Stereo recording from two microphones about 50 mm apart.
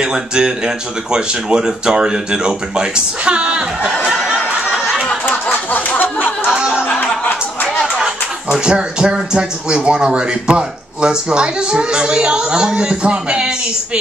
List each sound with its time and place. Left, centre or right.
0.0 s speech: centre
5.3 s a sound: left
8.5 s speech: centre